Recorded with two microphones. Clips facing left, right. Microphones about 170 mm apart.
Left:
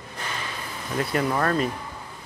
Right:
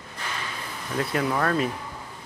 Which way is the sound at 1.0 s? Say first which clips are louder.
Left 1 dB; centre (ahead or behind).